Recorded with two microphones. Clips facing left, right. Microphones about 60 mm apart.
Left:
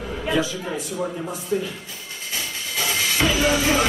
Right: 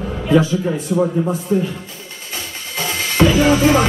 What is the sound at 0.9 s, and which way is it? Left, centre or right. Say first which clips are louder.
Speech: right 12 dB; right.